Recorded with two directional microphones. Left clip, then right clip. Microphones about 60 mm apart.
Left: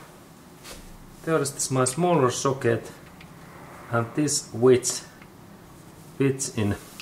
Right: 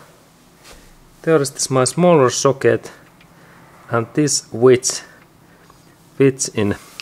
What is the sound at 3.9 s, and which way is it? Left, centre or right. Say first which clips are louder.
Speech: right 7 dB; right.